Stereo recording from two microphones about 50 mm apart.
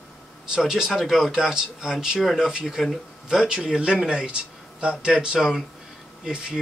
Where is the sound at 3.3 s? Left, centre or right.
Centre.